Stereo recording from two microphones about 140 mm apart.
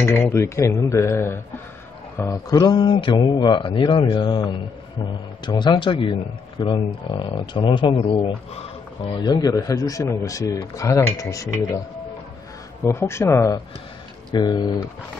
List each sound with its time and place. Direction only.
0.0 s speech: 15° left (ahead or behind)
2.5 s speech: 30° left (ahead or behind)
12.8 s speech: 20° left (ahead or behind)
14.3 s speech: 30° left (ahead or behind)